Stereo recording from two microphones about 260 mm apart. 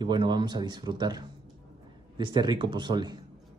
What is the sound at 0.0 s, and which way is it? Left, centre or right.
Speech, centre.